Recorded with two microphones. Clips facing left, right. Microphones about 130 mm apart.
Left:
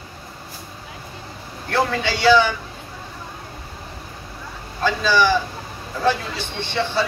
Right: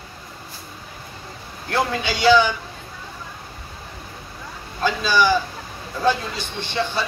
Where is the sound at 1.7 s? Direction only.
15° right (ahead or behind).